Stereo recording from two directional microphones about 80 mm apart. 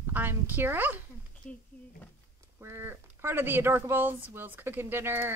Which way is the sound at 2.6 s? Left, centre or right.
Right.